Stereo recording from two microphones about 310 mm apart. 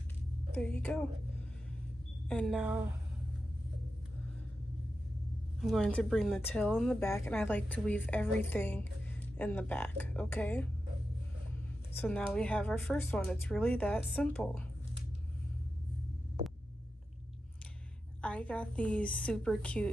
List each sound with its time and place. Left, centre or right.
0.6 s a woman's voice: centre
2.2 s a woman's voice: centre
5.6 s a woman's voice: centre
12.0 s a woman's voice: centre
18.2 s a woman's voice: centre